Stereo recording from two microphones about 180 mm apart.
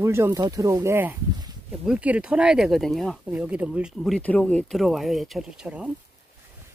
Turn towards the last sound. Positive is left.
turn(degrees=-5)  # may be behind; listen again after turning